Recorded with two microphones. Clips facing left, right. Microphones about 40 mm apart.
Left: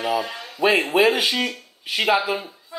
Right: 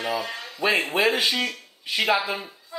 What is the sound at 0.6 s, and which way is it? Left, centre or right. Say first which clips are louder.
Speech: left 5 dB; centre.